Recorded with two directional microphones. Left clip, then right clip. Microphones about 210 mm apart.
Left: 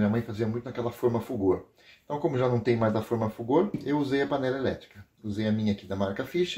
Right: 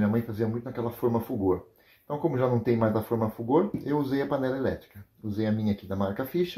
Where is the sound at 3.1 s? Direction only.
15° right (ahead or behind).